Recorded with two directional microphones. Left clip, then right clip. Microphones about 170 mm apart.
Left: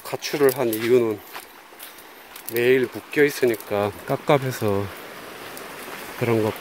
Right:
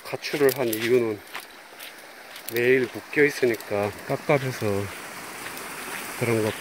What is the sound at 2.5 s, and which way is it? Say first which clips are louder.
Speech: left 2 dB; 15° left (ahead or behind).